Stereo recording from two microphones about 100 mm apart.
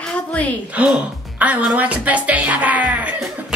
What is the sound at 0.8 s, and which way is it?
Speech, 15° right (ahead or behind).